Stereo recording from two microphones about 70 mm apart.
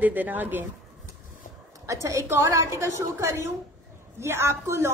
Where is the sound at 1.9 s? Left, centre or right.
Right.